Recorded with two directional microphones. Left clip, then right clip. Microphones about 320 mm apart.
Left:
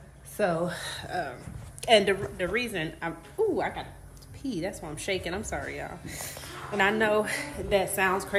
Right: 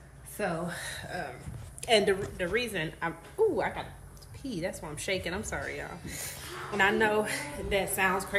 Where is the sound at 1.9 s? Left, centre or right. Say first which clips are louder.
Left 3 dB; centre.